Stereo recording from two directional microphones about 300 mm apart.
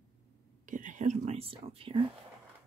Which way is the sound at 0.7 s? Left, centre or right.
Right.